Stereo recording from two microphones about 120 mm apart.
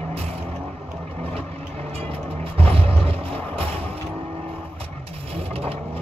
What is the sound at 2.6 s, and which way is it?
Music, 55° right (ahead or behind).